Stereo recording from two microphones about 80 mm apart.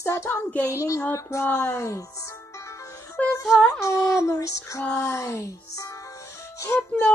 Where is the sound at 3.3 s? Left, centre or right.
Left.